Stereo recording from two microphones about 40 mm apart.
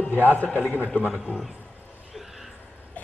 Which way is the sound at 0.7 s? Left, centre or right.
Left.